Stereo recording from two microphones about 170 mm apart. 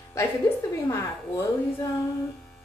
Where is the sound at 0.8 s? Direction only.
15° left (ahead or behind).